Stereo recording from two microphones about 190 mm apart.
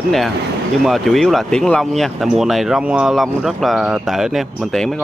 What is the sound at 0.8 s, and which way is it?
Speech, centre (ahead or behind).